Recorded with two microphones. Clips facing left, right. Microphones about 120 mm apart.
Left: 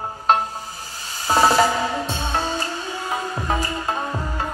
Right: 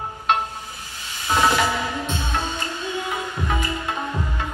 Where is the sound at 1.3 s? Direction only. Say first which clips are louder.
Left 3 dB; 35° left (ahead or behind).